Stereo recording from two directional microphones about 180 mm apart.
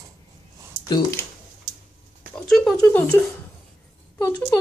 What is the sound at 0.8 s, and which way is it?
Speech, 20° left (ahead or behind).